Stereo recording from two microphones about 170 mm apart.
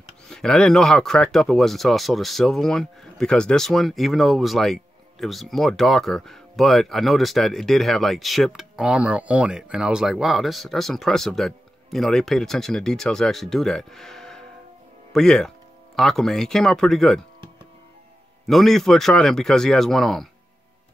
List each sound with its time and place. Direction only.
0.3 s speech: 5° left (ahead or behind)
18.4 s speech: centre (ahead or behind)